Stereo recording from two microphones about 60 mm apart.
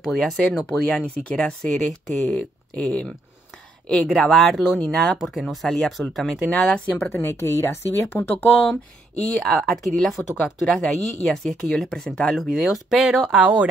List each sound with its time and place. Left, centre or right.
0.0 s speech: centre
0.7 s speech: left
4.1 s speech: centre
6.5 s speech: centre
7.1 s a woman's voice: left
8.2 s speech: left
9.3 s speech: centre
12.9 s speech: centre